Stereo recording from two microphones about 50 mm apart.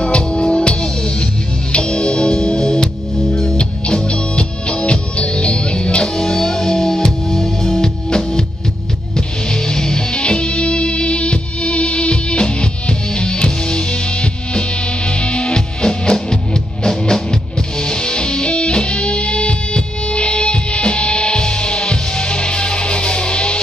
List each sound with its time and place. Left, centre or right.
0.0 s music: centre